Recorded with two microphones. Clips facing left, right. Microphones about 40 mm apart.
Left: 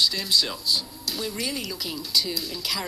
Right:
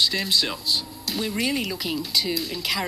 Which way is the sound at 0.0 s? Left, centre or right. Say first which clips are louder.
Right 1 dB; right.